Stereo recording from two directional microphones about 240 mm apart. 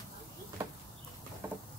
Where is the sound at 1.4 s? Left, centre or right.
Centre.